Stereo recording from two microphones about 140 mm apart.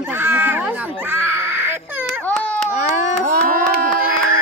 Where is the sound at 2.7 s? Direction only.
60° left (ahead or behind).